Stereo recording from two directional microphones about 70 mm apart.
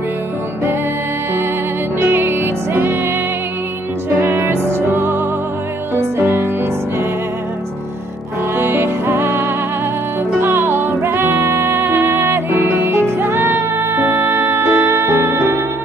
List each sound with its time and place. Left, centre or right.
2.0 s music: right
4.2 s music: right
8.5 s music: right